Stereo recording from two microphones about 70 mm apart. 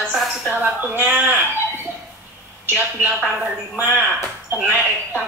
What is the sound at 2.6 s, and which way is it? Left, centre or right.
Speech, right.